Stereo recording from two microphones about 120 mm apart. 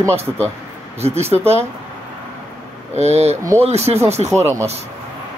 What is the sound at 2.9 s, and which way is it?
Speech, 65° right (ahead or behind).